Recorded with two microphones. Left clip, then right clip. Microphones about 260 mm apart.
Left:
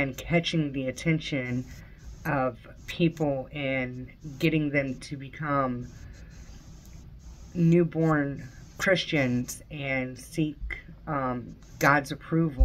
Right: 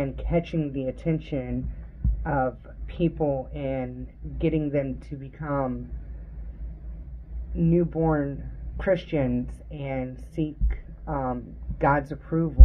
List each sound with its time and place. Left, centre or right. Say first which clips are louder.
0.0 s speech: even; centre
7.5 s speech: even; centre